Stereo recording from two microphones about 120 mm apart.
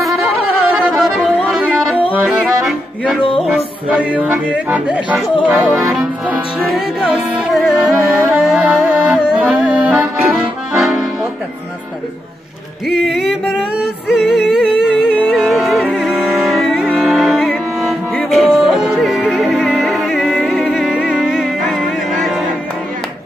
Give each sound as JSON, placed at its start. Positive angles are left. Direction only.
{"t": 0.6, "sound": "music", "side_deg": -5}
{"t": 1.5, "sound": "yodeling", "side_deg": -10}
{"t": 2.1, "sound": "accordion", "side_deg": -10}
{"t": 3.2, "sound": "music", "side_deg": 45}
{"t": 3.4, "sound": "music", "side_deg": -5}
{"t": 12.8, "sound": "music", "side_deg": 0}